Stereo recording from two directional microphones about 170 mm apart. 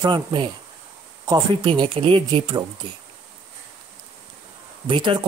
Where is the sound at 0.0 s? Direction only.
30° right (ahead or behind).